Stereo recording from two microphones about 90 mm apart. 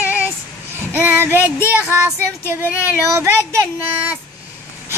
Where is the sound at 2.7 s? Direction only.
30° left (ahead or behind).